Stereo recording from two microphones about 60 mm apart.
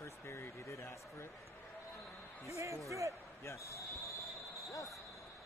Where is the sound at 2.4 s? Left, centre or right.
Right.